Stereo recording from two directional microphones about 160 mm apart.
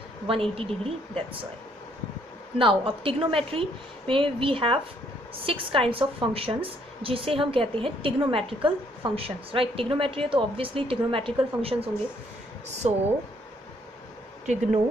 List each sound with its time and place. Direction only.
0.3 s a woman's voice: 35° right (ahead or behind)
2.6 s a woman's voice: 35° right (ahead or behind)